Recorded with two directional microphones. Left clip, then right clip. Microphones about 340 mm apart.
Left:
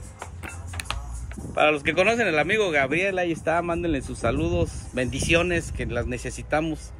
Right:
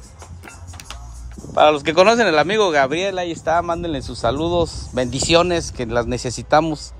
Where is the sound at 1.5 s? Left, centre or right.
Centre.